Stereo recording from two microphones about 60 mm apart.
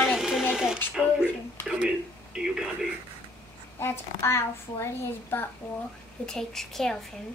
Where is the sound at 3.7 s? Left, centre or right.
Left.